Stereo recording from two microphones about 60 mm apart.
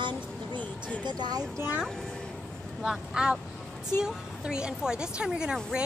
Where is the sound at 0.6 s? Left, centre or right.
Left.